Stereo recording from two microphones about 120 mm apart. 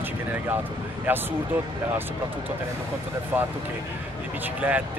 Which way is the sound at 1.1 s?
15° right (ahead or behind).